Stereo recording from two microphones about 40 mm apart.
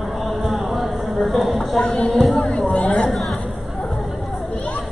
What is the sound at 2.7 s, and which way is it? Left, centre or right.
Chatter, left.